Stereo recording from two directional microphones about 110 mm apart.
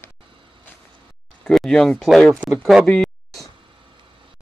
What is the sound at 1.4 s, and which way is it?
Speech, centre (ahead or behind).